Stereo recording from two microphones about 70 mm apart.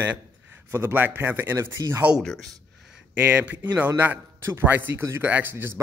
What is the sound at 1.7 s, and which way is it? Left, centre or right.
Speech, right.